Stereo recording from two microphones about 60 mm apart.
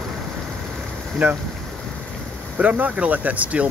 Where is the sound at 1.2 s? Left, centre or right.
Right.